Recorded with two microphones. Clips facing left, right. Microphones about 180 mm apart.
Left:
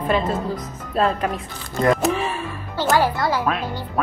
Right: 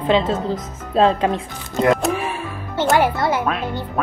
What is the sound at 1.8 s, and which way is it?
Music, 10° right (ahead or behind).